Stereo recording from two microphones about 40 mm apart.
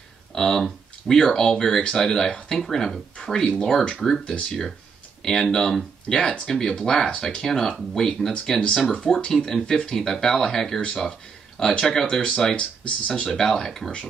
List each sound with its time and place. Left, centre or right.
0.3 s speech: centre
12.5 s speech: left
13.1 s speech: centre
13.7 s speech: centre